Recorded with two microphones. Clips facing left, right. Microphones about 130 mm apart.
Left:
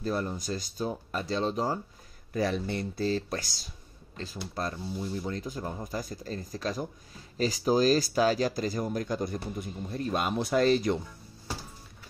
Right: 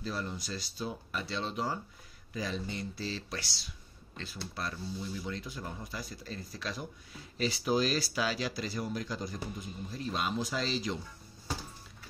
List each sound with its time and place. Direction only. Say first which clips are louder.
0.0 s speech: left 6 dB; 45° left (ahead or behind)
2.3 s speech: left 8 dB; 60° left (ahead or behind)